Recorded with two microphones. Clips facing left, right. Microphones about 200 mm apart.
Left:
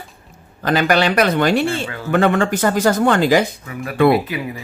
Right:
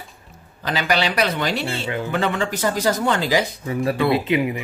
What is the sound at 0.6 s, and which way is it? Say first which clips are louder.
Speech: left 6 dB; 50° left (ahead or behind).